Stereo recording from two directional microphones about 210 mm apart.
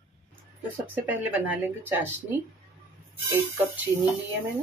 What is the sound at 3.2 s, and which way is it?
Speech, 10° right (ahead or behind).